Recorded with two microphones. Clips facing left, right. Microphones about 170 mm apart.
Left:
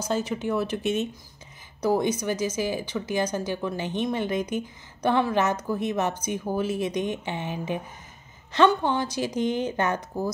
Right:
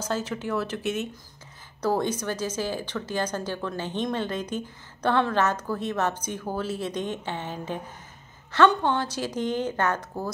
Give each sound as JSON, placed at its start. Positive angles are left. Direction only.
{"t": 0.0, "sound": "speech", "side_deg": 15}